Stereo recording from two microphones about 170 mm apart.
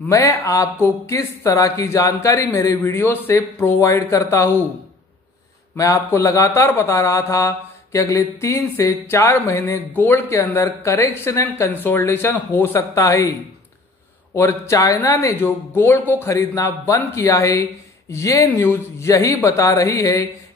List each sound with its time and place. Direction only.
0.1 s speech: 20° left (ahead or behind)
5.8 s speech: 20° left (ahead or behind)
14.3 s speech: 15° left (ahead or behind)